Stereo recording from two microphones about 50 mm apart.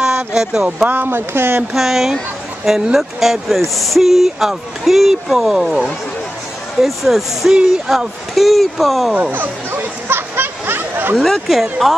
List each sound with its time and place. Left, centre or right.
0.0 s a sound: centre
0.8 s speech: right
1.7 s speech: centre
9.1 s a sound: right
11.1 s speech: centre
11.4 s speech: centre